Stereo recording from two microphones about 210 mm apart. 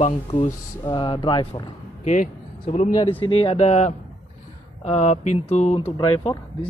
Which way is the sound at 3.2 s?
25° left (ahead or behind).